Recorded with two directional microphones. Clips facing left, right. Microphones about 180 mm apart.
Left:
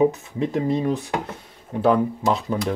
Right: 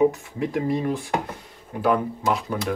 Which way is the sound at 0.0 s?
20° left (ahead or behind).